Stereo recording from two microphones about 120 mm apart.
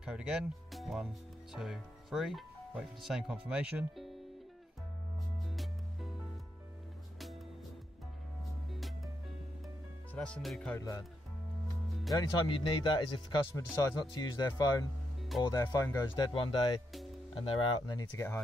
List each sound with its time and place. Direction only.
0.0 s speech: 5° right (ahead or behind)
5.4 s music: centre (ahead or behind)
8.7 s music: centre (ahead or behind)
10.1 s speech: 10° left (ahead or behind)
10.8 s speech: 30° left (ahead or behind)
12.1 s speech: 35° left (ahead or behind)